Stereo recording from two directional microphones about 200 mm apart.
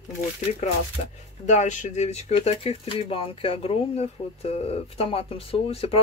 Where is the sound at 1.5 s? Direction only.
35° left (ahead or behind).